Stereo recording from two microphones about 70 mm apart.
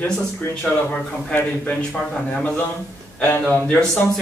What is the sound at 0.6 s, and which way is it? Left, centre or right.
A man's voice, left.